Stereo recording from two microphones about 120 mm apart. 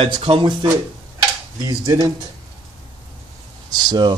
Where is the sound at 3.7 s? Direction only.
40° right (ahead or behind).